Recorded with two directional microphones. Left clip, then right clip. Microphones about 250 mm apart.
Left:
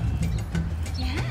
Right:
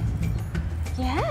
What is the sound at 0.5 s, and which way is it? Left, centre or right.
Music, centre.